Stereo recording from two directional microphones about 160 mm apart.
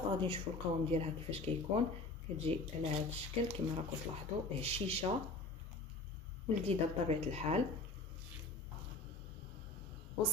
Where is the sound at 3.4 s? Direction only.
40° right (ahead or behind).